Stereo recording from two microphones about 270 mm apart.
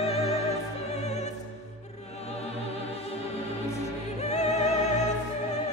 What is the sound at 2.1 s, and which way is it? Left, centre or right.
Music, left.